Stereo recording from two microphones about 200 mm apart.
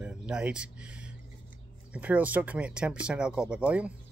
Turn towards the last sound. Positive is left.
turn(degrees=-5)  # may be behind; listen again after turning